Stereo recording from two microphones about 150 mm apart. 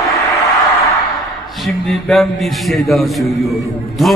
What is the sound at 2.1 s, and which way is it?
A man's voice, centre (ahead or behind).